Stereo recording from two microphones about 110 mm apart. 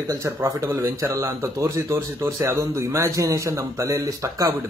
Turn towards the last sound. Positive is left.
turn(degrees=-30)  # may be behind; listen again after turning